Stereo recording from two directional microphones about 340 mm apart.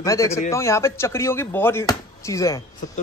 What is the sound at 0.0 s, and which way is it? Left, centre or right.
A man's voice, centre.